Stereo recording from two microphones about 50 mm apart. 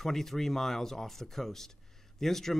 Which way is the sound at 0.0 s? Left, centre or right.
Centre.